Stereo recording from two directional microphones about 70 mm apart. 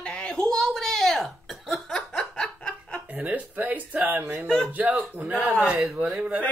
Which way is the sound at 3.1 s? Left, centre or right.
Right.